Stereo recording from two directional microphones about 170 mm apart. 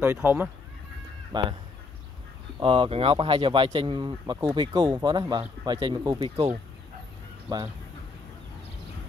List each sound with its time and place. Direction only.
0.0 s speech: 10° right (ahead or behind)
1.3 s speech: 25° right (ahead or behind)
2.6 s speech: 30° right (ahead or behind)
7.4 s speech: 20° right (ahead or behind)